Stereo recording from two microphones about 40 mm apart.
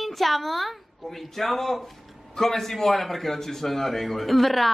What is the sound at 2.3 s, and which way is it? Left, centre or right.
A man's voice, centre.